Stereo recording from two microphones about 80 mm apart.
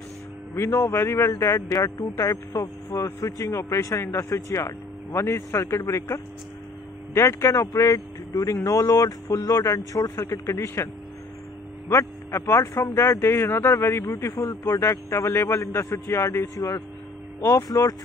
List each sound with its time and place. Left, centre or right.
0.6 s speech: left
11.9 s speech: left